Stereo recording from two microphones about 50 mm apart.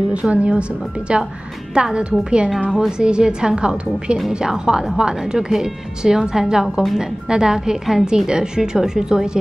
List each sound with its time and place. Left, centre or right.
0.1 s a woman's voice: right; by 7.0 s centre
7.0 s a woman's voice: centre